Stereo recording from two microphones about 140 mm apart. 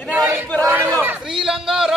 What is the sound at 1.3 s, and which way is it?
Speech, 5° right (ahead or behind).